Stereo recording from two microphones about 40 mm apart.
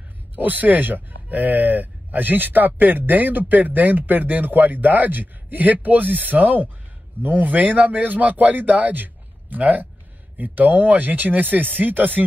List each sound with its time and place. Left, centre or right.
0.4 s speech: right